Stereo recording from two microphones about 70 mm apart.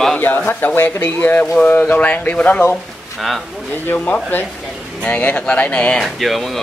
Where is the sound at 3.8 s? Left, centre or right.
Left.